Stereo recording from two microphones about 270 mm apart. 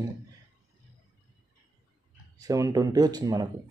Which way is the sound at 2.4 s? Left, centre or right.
Centre.